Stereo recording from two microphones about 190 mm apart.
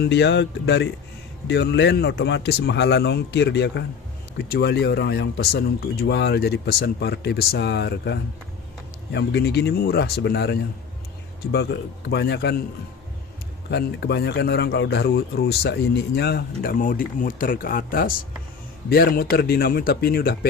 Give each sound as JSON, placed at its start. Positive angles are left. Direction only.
{"t": 0.0, "sound": "speech", "side_deg": 65}
{"t": 13.7, "sound": "speech", "side_deg": 60}